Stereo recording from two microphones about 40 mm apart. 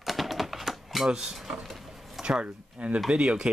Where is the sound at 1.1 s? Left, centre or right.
Centre.